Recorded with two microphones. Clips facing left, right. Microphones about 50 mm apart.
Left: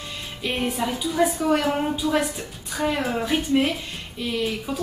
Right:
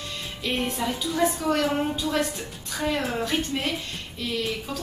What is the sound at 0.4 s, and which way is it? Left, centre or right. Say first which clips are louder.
A woman's voice: left 2 dB; centre.